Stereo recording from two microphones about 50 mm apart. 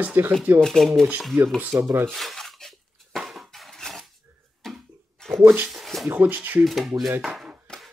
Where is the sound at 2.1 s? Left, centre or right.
Centre.